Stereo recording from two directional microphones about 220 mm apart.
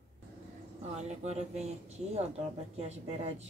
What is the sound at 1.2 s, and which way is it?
Speech, 30° right (ahead or behind).